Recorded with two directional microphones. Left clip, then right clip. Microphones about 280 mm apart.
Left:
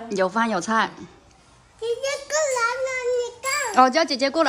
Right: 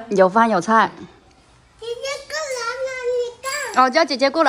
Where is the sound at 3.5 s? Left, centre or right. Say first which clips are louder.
Even; centre.